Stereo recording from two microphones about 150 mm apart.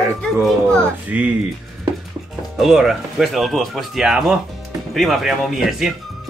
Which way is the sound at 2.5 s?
Centre (ahead or behind).